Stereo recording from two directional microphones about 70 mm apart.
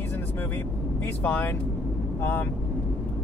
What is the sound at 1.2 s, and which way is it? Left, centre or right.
Speech, left.